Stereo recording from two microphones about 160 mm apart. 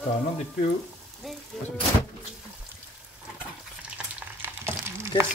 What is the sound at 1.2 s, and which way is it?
Music, centre (ahead or behind).